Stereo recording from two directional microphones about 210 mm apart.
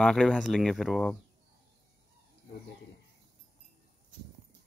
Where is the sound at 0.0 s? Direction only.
5° left (ahead or behind).